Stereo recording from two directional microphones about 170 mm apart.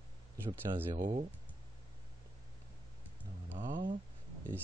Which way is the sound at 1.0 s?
45° right (ahead or behind).